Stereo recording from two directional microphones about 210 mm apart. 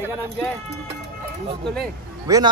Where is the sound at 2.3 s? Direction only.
15° right (ahead or behind).